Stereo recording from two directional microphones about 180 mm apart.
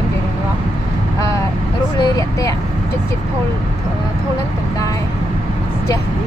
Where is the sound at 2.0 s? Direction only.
20° left (ahead or behind).